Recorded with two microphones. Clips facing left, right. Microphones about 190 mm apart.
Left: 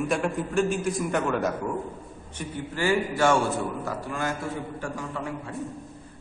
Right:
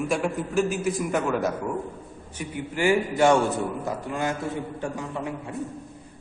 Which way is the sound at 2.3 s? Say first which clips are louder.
Right 2 dB; 15° right (ahead or behind).